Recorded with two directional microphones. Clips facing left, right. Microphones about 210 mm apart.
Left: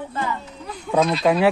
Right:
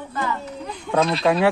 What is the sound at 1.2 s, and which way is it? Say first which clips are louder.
Speech: left 1 dB; 20° left (ahead or behind).